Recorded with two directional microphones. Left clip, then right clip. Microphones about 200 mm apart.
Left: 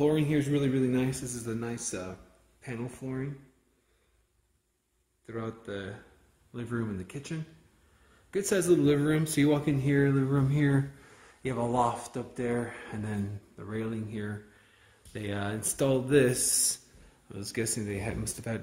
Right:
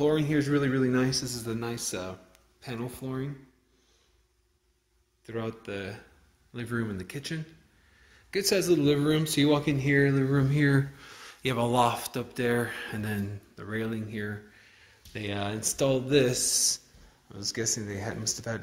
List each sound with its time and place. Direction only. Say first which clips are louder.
0.0 s speech: right 1 dB; 15° left (ahead or behind); by 3.3 s centre (ahead or behind)
5.2 s speech: right 3 dB; centre (ahead or behind)
8.3 s speech: right 1 dB; 10° left (ahead or behind)
11.1 s speech: right 5 dB; 10° right (ahead or behind); by 18.6 s 25° left (ahead or behind)